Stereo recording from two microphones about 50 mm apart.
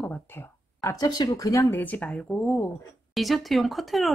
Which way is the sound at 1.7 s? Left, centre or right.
Left.